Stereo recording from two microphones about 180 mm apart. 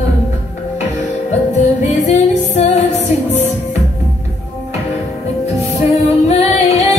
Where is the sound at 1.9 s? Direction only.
40° left (ahead or behind).